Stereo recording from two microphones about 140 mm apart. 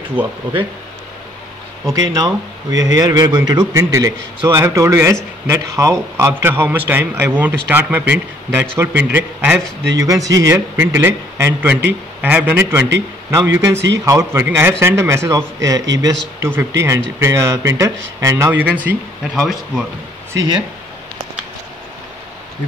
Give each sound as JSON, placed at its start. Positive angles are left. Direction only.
{"t": 0.1, "sound": "a man's voice", "side_deg": -10}
{"t": 2.0, "sound": "a man's voice", "side_deg": -30}
{"t": 9.9, "sound": "a man's voice", "side_deg": -25}
{"t": 19.3, "sound": "speech", "side_deg": 0}
{"t": 20.3, "sound": "speech", "side_deg": -30}